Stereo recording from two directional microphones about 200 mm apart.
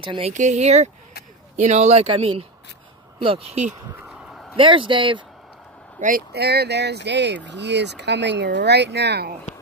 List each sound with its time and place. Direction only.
0.0 s speech: 25° right (ahead or behind)
0.3 s speech: 35° right (ahead or behind)
4.1 s a sound: 5° right (ahead or behind)
4.6 s speech: 25° right (ahead or behind)
5.9 s speech: 45° right (ahead or behind)